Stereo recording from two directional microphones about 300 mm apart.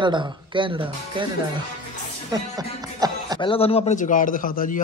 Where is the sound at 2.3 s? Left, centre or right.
Centre.